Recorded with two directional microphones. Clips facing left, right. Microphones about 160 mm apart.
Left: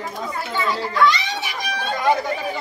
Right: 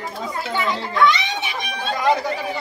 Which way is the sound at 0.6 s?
20° right (ahead or behind).